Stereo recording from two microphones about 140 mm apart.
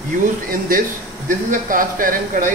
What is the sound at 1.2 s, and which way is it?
Speech, 75° right (ahead or behind).